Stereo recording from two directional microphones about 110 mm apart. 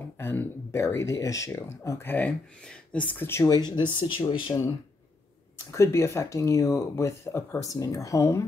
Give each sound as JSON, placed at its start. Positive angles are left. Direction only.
{"t": 0.2, "sound": "speech", "side_deg": 25}
{"t": 3.4, "sound": "speech", "side_deg": 40}
{"t": 5.7, "sound": "speech", "side_deg": 25}